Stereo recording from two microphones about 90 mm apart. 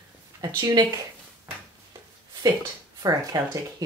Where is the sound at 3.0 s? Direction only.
40° right (ahead or behind).